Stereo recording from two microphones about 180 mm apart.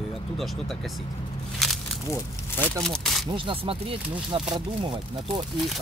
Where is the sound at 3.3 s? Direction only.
30° right (ahead or behind).